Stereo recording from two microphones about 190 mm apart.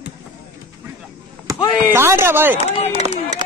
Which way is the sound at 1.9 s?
15° right (ahead or behind).